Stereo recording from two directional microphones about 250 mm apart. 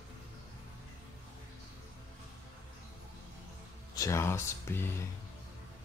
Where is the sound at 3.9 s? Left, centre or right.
Centre.